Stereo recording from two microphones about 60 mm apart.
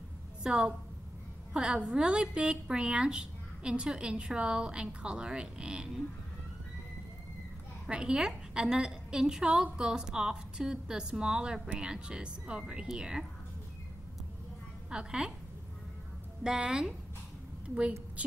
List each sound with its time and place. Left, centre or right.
0.4 s a woman's voice: centre
7.9 s a woman's voice: centre
14.9 s a woman's voice: centre
16.4 s a woman's voice: centre